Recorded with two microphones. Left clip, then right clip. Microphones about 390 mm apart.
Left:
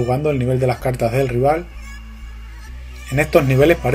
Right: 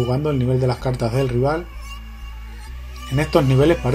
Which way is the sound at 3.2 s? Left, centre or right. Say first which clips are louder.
Left 3 dB; centre.